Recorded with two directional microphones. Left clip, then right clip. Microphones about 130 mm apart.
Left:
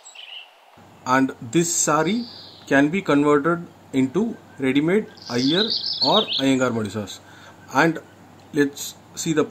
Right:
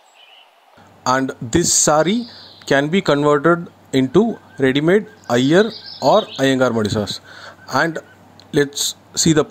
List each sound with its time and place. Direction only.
1.0 s speech: 60° right (ahead or behind)